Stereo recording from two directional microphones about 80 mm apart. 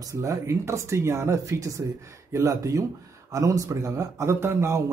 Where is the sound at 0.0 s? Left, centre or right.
Right.